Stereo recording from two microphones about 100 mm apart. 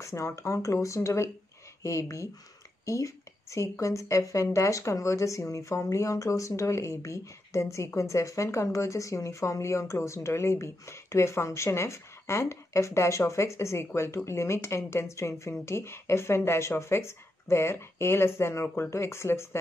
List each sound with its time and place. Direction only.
0.0 s a woman's voice: 30° left (ahead or behind)